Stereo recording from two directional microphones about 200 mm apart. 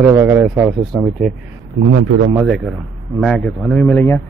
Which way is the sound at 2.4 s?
5° right (ahead or behind).